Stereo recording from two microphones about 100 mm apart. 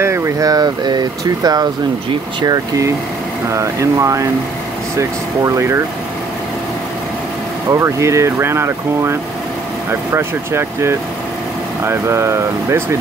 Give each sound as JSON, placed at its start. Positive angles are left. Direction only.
{"t": 0.0, "sound": "speech", "side_deg": -30}
{"t": 3.4, "sound": "speech", "side_deg": -30}
{"t": 7.7, "sound": "speech", "side_deg": -30}